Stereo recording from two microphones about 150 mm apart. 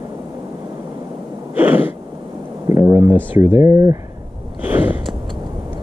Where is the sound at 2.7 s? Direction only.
20° right (ahead or behind).